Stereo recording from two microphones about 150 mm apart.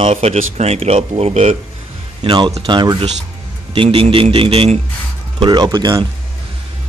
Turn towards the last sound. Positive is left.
turn(degrees=-25)  # may be behind; listen again after turning